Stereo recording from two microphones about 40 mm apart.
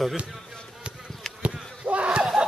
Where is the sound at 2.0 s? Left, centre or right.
Right.